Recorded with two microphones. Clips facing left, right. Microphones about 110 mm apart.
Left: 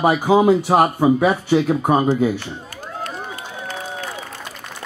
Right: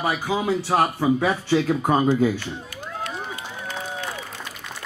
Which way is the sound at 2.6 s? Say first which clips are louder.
Left 2 dB; 40° left (ahead or behind).